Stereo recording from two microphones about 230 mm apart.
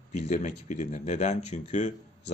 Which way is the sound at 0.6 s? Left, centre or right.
Left.